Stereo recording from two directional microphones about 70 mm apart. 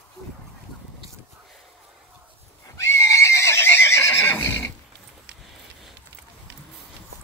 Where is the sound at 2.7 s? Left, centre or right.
Left.